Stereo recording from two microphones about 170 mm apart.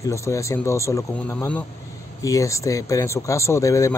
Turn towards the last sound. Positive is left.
turn(degrees=20)  # may be behind; listen again after turning